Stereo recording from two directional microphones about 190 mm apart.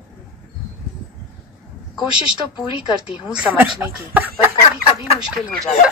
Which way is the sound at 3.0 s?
5° right (ahead or behind).